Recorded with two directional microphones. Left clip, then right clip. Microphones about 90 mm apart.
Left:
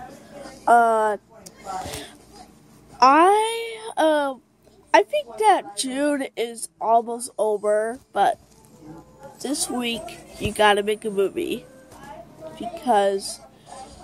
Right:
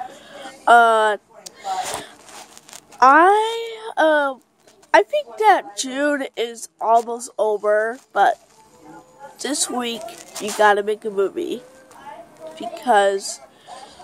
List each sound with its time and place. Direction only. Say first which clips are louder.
0.3 s a sound: right 4 dB; 45° right (ahead or behind)
3.0 s a woman's voice: right 3 dB; 20° right (ahead or behind)
9.8 s speech: right 2 dB; 25° right (ahead or behind)